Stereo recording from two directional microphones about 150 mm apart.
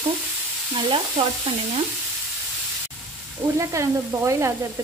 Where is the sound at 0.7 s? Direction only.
30° right (ahead or behind).